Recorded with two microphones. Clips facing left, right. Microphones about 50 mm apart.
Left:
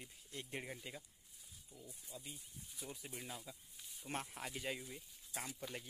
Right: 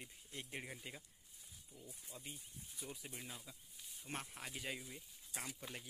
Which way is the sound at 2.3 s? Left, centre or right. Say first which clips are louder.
Even; centre.